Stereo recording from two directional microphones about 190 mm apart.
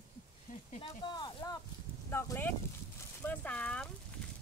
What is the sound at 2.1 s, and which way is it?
Speech, 15° left (ahead or behind).